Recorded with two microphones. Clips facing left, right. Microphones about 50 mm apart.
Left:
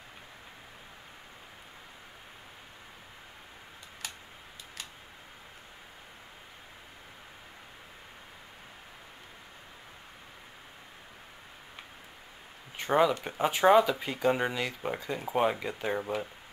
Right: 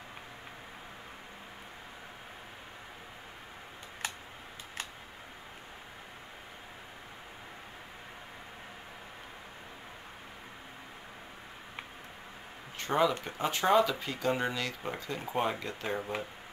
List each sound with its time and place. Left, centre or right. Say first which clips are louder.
4.0 s tick-tock: right 5 dB; right
12.7 s speech: left 3 dB; centre